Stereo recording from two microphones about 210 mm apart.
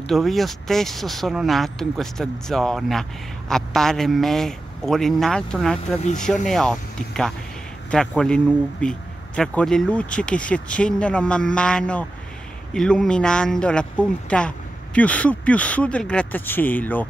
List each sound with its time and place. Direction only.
0.0 s speech: centre (ahead or behind)
5.9 s speech: 35° left (ahead or behind)
6.4 s speech: centre (ahead or behind)